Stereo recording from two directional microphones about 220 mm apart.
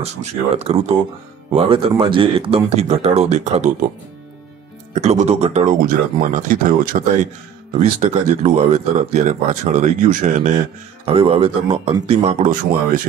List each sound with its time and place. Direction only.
0.0 s speech: 30° right (ahead or behind)
4.9 s speech: 30° right (ahead or behind)
8.0 s speech: 30° right (ahead or behind)